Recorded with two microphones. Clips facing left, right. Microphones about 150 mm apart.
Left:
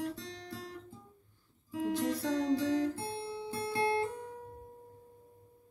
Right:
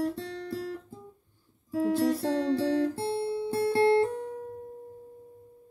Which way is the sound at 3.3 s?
60° right (ahead or behind).